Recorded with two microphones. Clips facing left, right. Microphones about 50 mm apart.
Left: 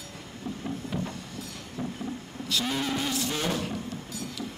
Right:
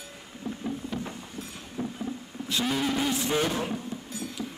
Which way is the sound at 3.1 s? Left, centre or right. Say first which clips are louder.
Right 3 dB; right.